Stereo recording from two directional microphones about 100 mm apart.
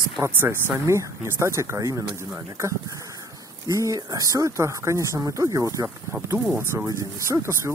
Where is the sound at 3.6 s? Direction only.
35° right (ahead or behind).